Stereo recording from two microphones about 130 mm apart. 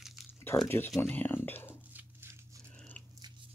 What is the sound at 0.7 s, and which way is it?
Speech, 20° left (ahead or behind).